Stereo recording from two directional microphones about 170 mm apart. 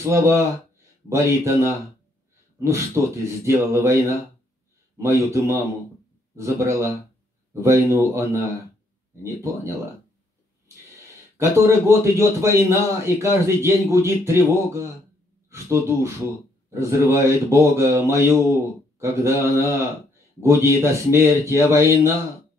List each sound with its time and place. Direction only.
0.0 s speech: 15° right (ahead or behind)
11.3 s speech: 15° right (ahead or behind)
16.7 s speech: 15° right (ahead or behind)